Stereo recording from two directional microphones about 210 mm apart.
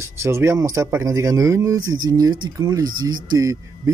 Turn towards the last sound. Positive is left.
turn(degrees=-15)  # may be behind; listen again after turning